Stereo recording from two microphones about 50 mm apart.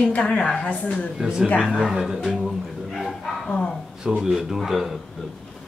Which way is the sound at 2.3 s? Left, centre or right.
Centre.